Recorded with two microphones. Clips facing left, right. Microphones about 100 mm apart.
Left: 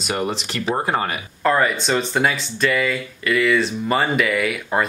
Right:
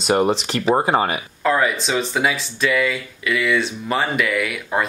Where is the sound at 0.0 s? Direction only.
30° right (ahead or behind).